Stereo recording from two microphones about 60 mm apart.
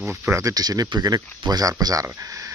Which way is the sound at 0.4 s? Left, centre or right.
Right.